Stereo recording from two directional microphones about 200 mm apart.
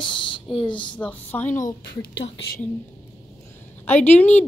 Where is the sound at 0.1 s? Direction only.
25° left (ahead or behind).